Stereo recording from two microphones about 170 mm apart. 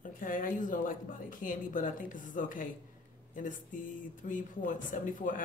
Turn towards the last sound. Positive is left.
turn(degrees=50)  # may be behind; listen again after turning